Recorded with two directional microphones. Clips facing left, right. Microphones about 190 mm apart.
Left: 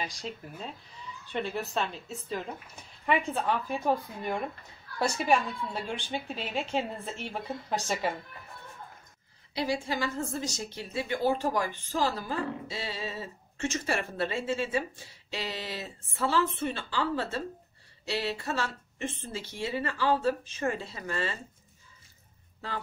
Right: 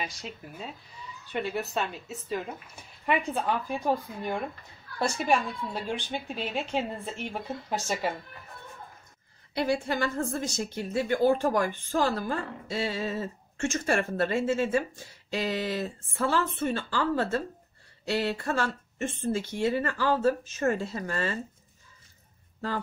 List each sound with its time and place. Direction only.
0.0 s speech: 5° right (ahead or behind)
9.5 s a woman's voice: 55° right (ahead or behind)